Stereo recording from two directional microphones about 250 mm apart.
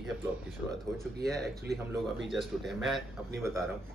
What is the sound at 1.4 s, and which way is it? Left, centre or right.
Speech, right.